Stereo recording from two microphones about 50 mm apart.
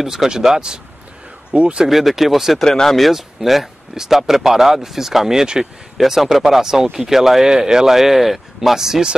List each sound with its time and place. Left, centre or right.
0.0 s speech: centre
1.5 s speech: right
1.9 s speech: centre
2.6 s speech: centre